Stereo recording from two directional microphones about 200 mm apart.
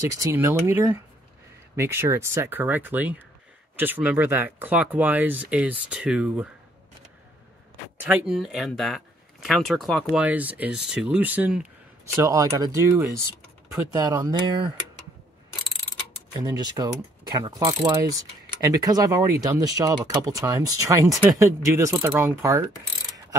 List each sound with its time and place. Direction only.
0.2 s speech: 10° right (ahead or behind)
8.0 s speech: 5° right (ahead or behind)
10.1 s speech: 5° right (ahead or behind)
13.9 s mechanisms: 20° right (ahead or behind)
16.3 s mechanisms: 20° right (ahead or behind)
19.4 s speech: 15° right (ahead or behind)